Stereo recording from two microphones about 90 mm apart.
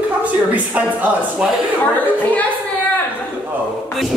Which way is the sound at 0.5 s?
15° right (ahead or behind).